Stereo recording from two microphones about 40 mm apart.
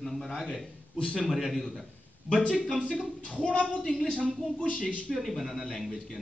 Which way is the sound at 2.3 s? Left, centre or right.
Centre.